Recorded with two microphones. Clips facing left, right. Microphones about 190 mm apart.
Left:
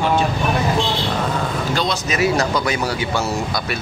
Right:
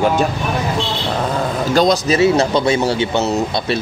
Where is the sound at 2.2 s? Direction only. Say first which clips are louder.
Right 5 dB; 25° right (ahead or behind).